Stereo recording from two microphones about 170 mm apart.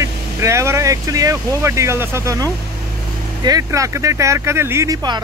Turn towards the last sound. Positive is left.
turn(degrees=-25)  # may be behind; listen again after turning